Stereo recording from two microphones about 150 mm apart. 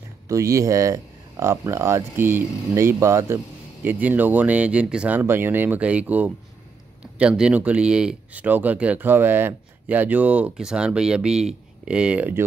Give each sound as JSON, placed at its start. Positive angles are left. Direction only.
{"t": 0.3, "sound": "speech", "side_deg": -20}